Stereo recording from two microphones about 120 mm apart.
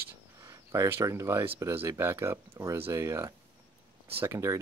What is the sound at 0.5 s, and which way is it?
Speech, 20° right (ahead or behind).